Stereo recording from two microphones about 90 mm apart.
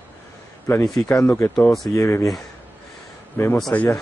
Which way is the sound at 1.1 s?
35° left (ahead or behind).